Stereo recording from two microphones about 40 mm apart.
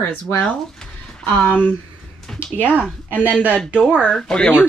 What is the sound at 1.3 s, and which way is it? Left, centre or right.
Speech, left.